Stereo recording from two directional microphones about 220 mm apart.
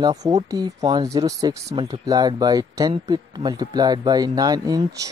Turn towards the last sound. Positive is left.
turn(degrees=-15)  # may be behind; listen again after turning